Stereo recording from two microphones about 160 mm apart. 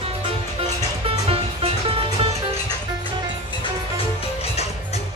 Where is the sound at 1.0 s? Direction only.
35° right (ahead or behind).